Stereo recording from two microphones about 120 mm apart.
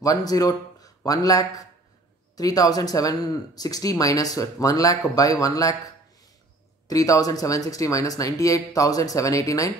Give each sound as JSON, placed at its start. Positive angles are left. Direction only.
{"t": 0.0, "sound": "a man's voice", "side_deg": 30}
{"t": 6.9, "sound": "speech", "side_deg": 30}